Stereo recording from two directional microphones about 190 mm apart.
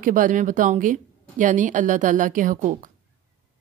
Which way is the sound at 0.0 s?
45° right (ahead or behind).